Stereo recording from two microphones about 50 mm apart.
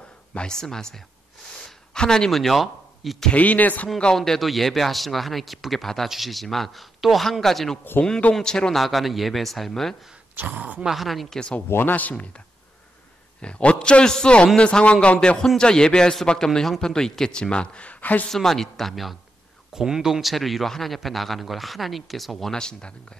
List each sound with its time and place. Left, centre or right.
0.5 s a man's voice: centre
1.6 s a sound: centre
2.3 s speech: centre
3.3 s speech: left
4.0 s a man's voice: centre
8.7 s a man's voice: centre
10.3 s speech: right
10.8 s a man's voice: centre
11.3 s a man's voice: left
11.7 s speech: left
13.4 s a man's voice: left
18.3 s a man's voice: centre
19.7 s a man's voice: centre
22.5 s a man's voice: centre